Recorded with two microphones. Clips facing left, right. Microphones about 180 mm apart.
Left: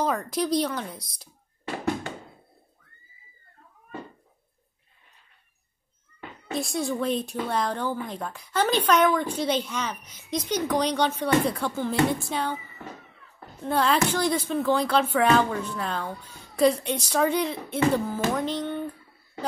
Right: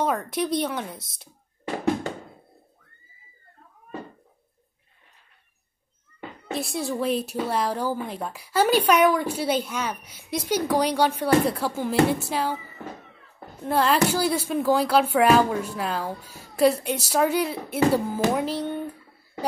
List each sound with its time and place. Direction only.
0.0 s speech: 5° right (ahead or behind)
0.9 s speech: 25° right (ahead or behind)
6.5 s a woman's voice: centre (ahead or behind)
13.7 s a woman's voice: centre (ahead or behind)